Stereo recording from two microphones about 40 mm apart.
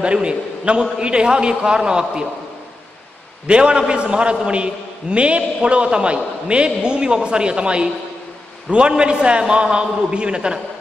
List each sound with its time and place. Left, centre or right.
0.0 s a man's voice: right
3.4 s a man's voice: right